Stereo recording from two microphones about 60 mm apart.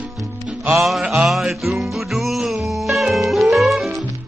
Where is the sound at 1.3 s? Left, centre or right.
Centre.